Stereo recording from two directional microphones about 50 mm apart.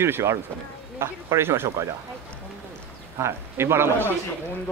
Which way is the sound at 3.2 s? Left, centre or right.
Right.